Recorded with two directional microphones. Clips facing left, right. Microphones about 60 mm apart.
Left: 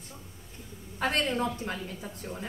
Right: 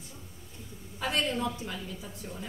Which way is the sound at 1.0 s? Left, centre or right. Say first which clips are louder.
Left 2 dB; left.